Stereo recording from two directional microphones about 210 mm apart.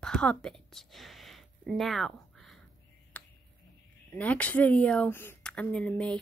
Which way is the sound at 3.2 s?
5° left (ahead or behind).